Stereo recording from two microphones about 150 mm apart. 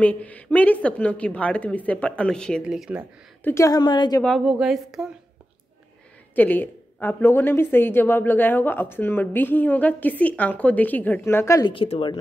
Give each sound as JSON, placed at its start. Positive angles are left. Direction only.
{"t": 0.0, "sound": "speech", "side_deg": 10}
{"t": 2.6, "sound": "speech", "side_deg": -5}
{"t": 3.4, "sound": "a woman's voice", "side_deg": 20}
{"t": 4.5, "sound": "a woman's voice", "side_deg": -5}
{"t": 6.3, "sound": "speech", "side_deg": 10}
{"t": 11.7, "sound": "speech", "side_deg": 35}